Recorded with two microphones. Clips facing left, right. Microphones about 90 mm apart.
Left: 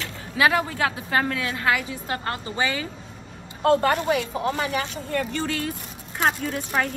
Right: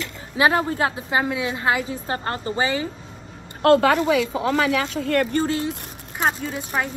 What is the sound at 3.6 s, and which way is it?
Speech, 90° right.